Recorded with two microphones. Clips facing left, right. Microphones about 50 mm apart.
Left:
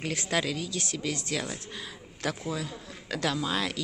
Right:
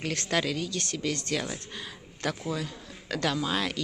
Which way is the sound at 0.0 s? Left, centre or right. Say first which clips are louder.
Right 1 dB; centre.